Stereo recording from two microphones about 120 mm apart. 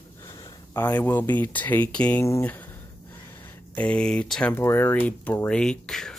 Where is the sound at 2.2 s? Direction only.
20° left (ahead or behind).